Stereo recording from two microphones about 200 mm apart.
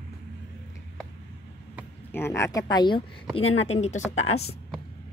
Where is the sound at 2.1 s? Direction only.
10° left (ahead or behind); by 4.2 s 35° left (ahead or behind).